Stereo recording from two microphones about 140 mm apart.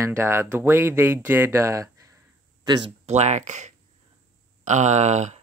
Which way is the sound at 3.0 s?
55° right (ahead or behind).